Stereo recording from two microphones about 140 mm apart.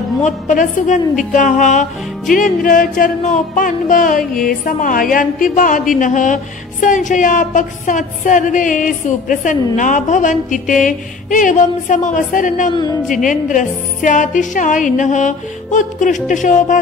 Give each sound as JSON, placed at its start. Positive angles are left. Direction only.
{"t": 0.2, "sound": "a woman's voice", "side_deg": 65}
{"t": 2.3, "sound": "music", "side_deg": 75}
{"t": 9.8, "sound": "a woman's voice", "side_deg": 65}